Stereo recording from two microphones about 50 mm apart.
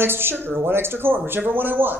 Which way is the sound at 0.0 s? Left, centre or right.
Right.